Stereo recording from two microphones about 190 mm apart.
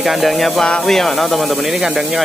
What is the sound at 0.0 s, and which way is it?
Speech, centre (ahead or behind).